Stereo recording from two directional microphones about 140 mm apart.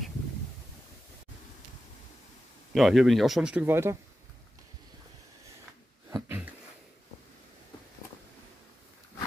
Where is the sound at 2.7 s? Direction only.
Centre (ahead or behind); by 4.0 s 15° right (ahead or behind).